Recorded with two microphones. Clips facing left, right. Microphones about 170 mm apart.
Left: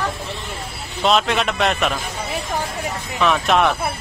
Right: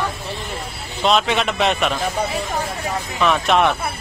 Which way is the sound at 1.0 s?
Centre (ahead or behind).